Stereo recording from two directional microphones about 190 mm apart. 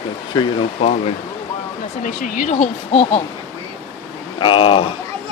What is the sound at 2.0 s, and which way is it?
Speech, 45° left (ahead or behind).